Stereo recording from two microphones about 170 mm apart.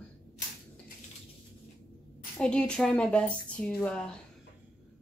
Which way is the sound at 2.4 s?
5° left (ahead or behind).